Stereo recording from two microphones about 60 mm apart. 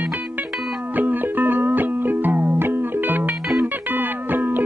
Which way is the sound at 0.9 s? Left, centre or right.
Right.